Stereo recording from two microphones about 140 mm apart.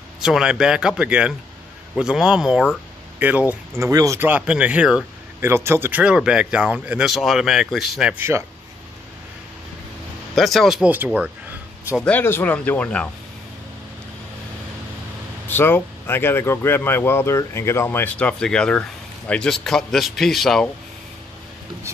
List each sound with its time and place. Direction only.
0.2 s a man's voice: 5° right (ahead or behind)
3.8 s speech: 25° right (ahead or behind); by 5.0 s 5° right (ahead or behind)
5.4 s speech: 20° right (ahead or behind)
8.2 s speech: 20° right (ahead or behind)
10.3 s a man's voice: centre (ahead or behind)
12.0 s speech: 10° left (ahead or behind)
15.4 s speech: 15° left (ahead or behind)